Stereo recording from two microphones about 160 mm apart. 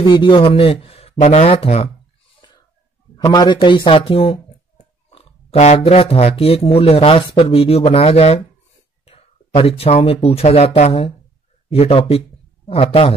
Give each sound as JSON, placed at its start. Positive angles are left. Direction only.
{"t": 0.0, "sound": "speech", "side_deg": 30}
{"t": 3.2, "sound": "speech", "side_deg": 25}